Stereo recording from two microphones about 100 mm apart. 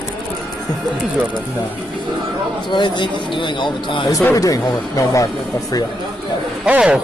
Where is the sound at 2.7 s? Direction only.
50° left (ahead or behind).